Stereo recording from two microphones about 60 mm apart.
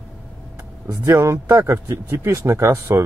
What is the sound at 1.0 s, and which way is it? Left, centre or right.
Speech, right.